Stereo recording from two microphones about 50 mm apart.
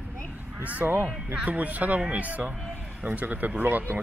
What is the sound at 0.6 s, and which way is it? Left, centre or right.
Speech, right.